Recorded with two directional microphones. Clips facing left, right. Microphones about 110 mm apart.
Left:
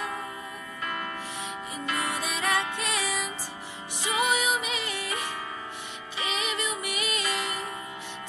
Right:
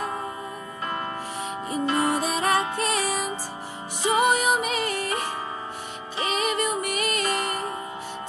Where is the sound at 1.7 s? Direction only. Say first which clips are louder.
Right 9 dB; 35° right (ahead or behind).